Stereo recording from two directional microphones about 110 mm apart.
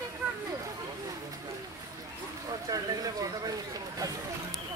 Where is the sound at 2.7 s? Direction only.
35° right (ahead or behind).